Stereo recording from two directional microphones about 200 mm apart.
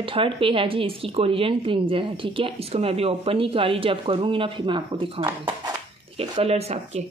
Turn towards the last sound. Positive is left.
turn(degrees=-30)  # may be behind; listen again after turning